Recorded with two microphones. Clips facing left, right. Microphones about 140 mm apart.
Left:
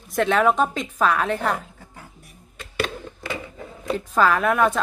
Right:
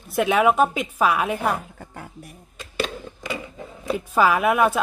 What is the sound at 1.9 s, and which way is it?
Music, 60° right (ahead or behind).